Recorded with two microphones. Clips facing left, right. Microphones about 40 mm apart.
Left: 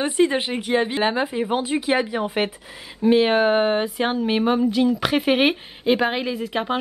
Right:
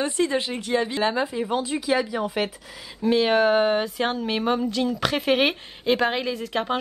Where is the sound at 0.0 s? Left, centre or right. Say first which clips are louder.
Left 4 dB; left.